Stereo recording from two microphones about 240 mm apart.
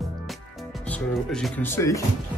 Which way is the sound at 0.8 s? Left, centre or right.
Centre.